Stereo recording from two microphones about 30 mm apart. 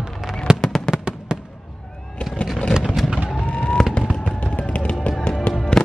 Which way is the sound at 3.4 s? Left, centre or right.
Left.